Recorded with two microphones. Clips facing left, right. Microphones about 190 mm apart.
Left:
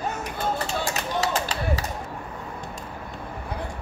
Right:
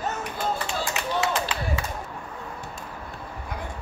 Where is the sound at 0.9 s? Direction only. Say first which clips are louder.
Right 3 dB; 35° left (ahead or behind).